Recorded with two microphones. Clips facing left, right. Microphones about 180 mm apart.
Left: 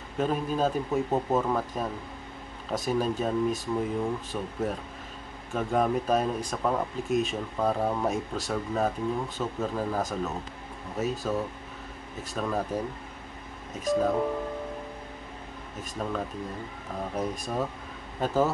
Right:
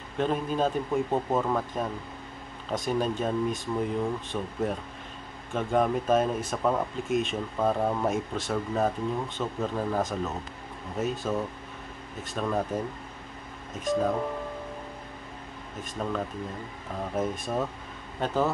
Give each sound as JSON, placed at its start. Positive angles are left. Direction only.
{"t": 0.2, "sound": "speech", "side_deg": 5}
{"t": 15.8, "sound": "speech", "side_deg": 0}